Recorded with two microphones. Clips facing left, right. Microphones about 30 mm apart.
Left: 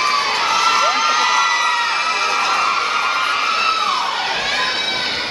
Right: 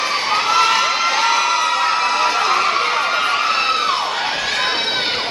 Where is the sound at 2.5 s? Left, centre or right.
Centre.